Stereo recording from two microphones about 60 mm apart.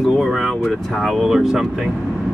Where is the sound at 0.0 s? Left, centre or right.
Centre.